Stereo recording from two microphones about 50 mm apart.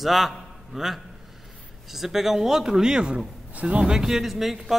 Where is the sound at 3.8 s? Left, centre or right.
Centre.